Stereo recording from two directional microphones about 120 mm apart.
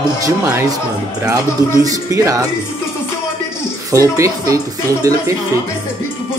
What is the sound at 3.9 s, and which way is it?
Speech, 25° right (ahead or behind).